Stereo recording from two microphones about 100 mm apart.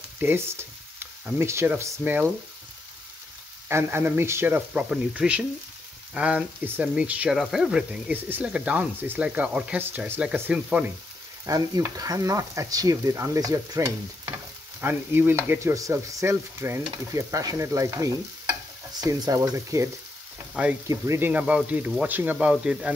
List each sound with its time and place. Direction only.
0.2 s frying: 20° right (ahead or behind)
3.6 s speech: 25° right (ahead or behind)
11.4 s stir: 35° right (ahead or behind)
14.8 s speech: 20° right (ahead or behind)
15.7 s speech: 35° right (ahead or behind)
16.9 s stir: 30° right (ahead or behind)
21.3 s speech: 15° right (ahead or behind)